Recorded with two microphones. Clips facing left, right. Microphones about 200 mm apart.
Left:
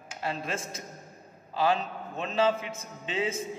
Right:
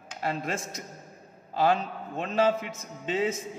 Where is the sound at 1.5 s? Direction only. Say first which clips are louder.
Right 2 dB; 50° right (ahead or behind).